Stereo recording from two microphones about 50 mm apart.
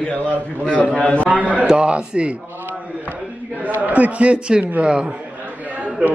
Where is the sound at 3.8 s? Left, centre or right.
Right.